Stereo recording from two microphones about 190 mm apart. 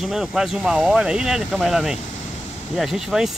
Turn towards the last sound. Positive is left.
turn(degrees=0)  # may be behind; listen again after turning